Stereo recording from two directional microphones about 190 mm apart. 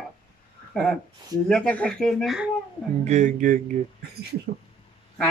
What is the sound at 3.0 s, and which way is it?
Speech, 40° right (ahead or behind).